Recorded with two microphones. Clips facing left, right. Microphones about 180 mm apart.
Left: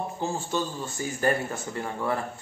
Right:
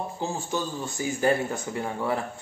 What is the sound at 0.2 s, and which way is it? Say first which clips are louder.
Speech: left 1 dB; 15° right (ahead or behind).